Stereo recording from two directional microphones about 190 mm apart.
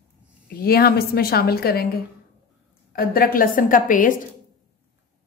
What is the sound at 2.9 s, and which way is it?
A woman's voice, 50° left (ahead or behind).